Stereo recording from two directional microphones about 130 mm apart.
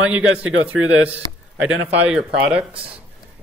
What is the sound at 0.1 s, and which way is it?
Speech, 10° right (ahead or behind).